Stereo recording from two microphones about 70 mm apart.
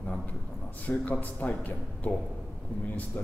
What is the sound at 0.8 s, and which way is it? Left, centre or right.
Speech, left.